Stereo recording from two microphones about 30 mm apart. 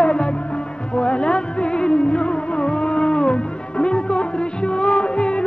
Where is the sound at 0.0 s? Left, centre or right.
Left.